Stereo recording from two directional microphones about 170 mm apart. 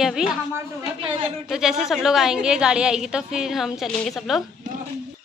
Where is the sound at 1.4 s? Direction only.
5° right (ahead or behind).